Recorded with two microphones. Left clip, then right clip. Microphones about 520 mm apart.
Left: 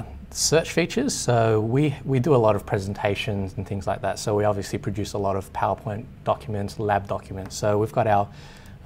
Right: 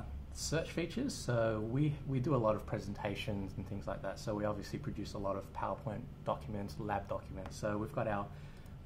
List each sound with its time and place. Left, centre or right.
0.4 s speech: left